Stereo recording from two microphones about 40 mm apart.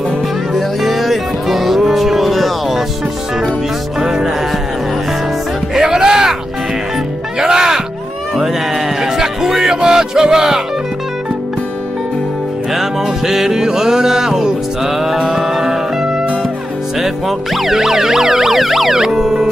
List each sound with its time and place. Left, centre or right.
0.6 s music: centre
4.0 s music: centre
5.8 s music: centre
7.3 s music: centre
12.7 s music: centre